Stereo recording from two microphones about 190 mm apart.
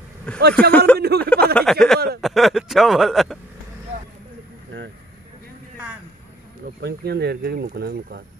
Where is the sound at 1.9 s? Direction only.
55° right (ahead or behind).